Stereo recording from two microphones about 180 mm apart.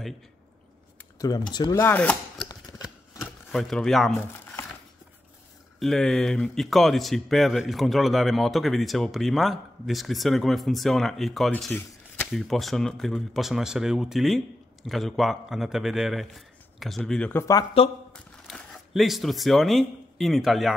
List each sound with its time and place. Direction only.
1.1 s computer keyboard: 20° left (ahead or behind)
1.5 s speech: 20° left (ahead or behind)
3.5 s a man's voice: centre (ahead or behind)
5.8 s a man's voice: 5° left (ahead or behind)
18.1 s speech: 5° left (ahead or behind)